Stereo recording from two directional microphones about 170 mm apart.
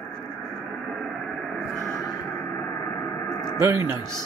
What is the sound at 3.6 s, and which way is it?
Speech, 15° right (ahead or behind).